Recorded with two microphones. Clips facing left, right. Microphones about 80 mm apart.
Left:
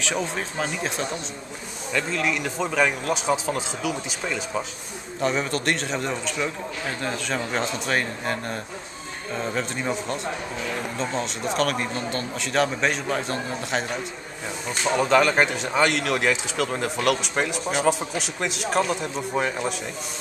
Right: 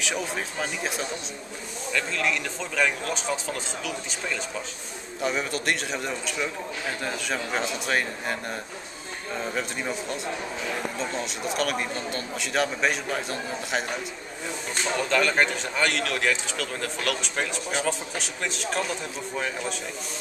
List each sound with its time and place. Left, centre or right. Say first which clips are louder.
0.0 s speech: left 3 dB; centre
1.9 s speech: left 2 dB; centre
5.2 s speech: left 3 dB; centre
14.7 s speech: left 6 dB; centre